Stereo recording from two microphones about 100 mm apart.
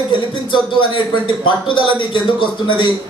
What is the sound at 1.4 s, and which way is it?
A man's voice, 55° left (ahead or behind).